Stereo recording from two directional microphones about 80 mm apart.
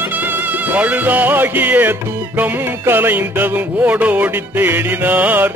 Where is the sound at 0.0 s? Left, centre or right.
Right.